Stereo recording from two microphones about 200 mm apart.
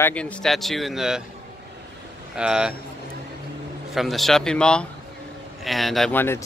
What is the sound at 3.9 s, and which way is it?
Speech, centre (ahead or behind).